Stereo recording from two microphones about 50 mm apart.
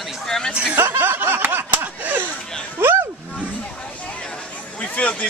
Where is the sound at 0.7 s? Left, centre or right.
Right.